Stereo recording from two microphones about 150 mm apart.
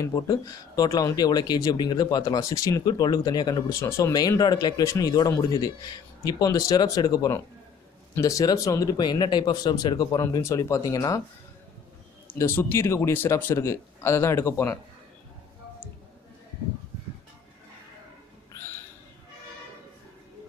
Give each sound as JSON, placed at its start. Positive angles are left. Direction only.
{"t": 0.0, "sound": "speech", "side_deg": 25}
{"t": 12.4, "sound": "speech", "side_deg": 15}